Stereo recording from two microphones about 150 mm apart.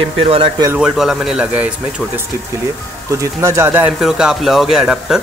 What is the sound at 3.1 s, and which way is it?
Speech, 20° right (ahead or behind).